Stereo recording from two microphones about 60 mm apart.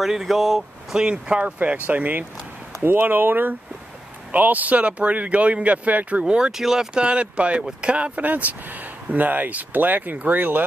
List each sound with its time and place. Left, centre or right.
0.0 s speech: centre; by 10.6 s right